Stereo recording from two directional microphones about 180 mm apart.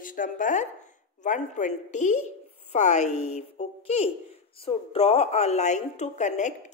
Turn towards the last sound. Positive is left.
turn(degrees=40)  # may be behind; listen again after turning